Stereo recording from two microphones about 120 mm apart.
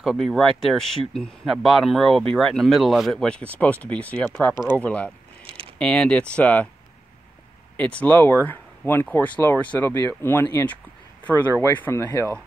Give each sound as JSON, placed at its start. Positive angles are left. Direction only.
{"t": 0.0, "sound": "speech", "side_deg": 0}
{"t": 7.7, "sound": "speech", "side_deg": 10}
{"t": 11.8, "sound": "speech", "side_deg": 20}